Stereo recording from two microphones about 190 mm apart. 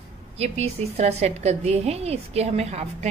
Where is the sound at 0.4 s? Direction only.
35° right (ahead or behind).